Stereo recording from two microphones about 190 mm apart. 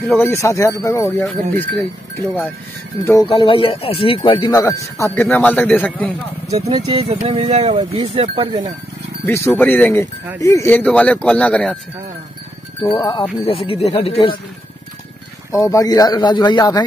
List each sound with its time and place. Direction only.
0.2 s speech: 15° left (ahead or behind)
3.3 s speech: 30° left (ahead or behind); by 6.1 s 5° left (ahead or behind)
6.7 s speech: 25° right (ahead or behind)
7.1 s speech: 35° right (ahead or behind)
9.2 s speech: 15° left (ahead or behind)
12.8 s speech: 25° left (ahead or behind)
15.5 s speech: 15° left (ahead or behind)